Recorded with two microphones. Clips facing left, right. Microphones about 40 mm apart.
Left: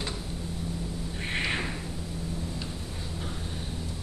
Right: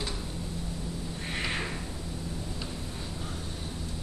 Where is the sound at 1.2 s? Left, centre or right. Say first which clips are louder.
Left 3 dB; left.